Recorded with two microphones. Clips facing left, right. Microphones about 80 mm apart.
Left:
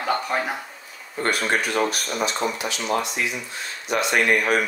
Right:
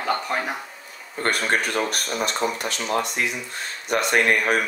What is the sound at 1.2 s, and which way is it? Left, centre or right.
Speech, right.